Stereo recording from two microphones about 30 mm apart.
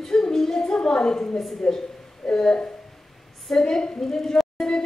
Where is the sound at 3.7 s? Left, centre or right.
Centre.